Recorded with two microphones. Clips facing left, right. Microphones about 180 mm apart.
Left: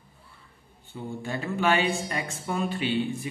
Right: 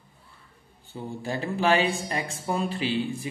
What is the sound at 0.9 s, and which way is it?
Speech, 30° right (ahead or behind).